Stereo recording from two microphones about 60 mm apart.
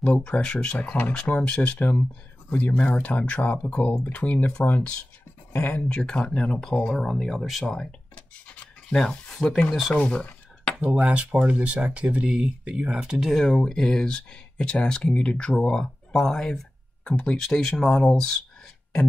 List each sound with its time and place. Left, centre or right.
0.2 s speech: centre
5.9 s speech: centre
7.6 s speech: centre
8.9 s speech: centre
9.9 s a sound: centre
11.0 s speech: right
12.3 s speech: centre
13.2 s speech: centre